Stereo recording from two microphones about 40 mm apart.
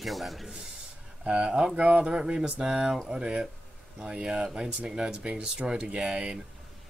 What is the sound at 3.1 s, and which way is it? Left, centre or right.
Speech, right.